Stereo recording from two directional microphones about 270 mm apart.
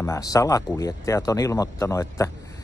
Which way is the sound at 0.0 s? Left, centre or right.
Centre.